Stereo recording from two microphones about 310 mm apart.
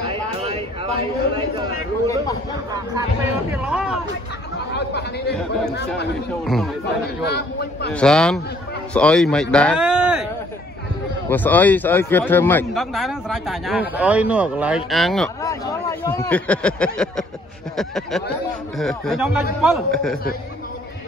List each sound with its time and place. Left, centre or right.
3.4 s speech: centre
4.7 s speech: left
6.4 s speech: centre
7.2 s speech: left
7.9 s speech: centre
11.2 s speech: centre